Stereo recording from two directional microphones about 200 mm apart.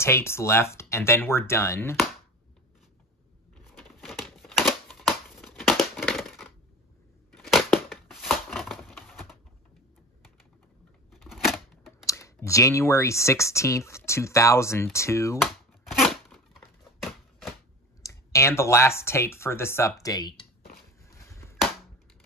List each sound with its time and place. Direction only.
0.0 s speech: 10° left (ahead or behind)
3.7 s crumpling: centre (ahead or behind)
7.3 s crushing: centre (ahead or behind)
11.1 s a sound: centre (ahead or behind)
12.1 s speech: 15° left (ahead or behind)
15.4 s tearing: centre (ahead or behind)
18.0 s speech: 15° left (ahead or behind)
21.3 s a sound: 15° left (ahead or behind)